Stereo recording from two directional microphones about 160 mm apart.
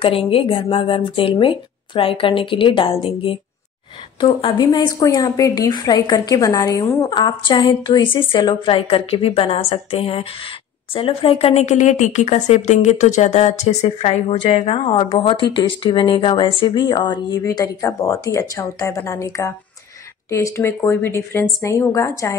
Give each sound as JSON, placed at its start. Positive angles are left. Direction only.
{"t": 0.0, "sound": "a woman's voice", "side_deg": 35}